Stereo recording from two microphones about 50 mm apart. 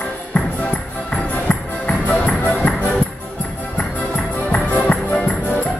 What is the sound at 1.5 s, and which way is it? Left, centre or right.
Music, left.